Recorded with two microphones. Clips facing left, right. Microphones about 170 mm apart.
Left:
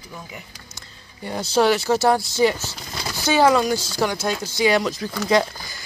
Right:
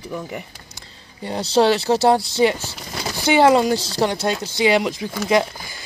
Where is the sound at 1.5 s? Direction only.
30° right (ahead or behind).